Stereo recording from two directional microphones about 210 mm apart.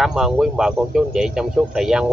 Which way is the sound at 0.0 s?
Centre (ahead or behind).